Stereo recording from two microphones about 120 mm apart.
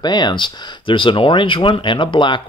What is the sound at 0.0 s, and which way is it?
Speech, 35° left (ahead or behind).